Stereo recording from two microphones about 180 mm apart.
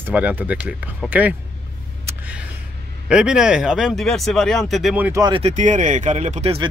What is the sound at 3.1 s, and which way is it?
Speech, 5° right (ahead or behind).